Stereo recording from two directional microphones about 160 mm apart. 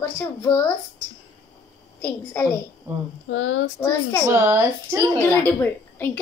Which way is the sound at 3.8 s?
15° left (ahead or behind).